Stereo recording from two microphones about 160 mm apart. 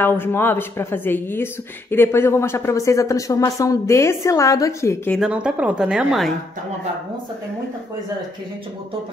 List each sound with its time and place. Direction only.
0.0 s speech: 15° left (ahead or behind)
5.1 s a woman's voice: 5° right (ahead or behind)